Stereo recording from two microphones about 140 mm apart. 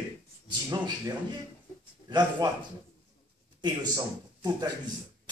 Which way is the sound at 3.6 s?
30° right (ahead or behind).